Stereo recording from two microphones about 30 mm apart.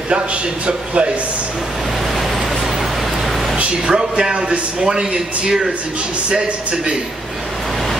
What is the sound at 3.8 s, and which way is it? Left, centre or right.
Speech, right.